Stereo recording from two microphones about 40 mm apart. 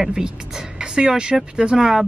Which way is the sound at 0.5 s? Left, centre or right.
Right.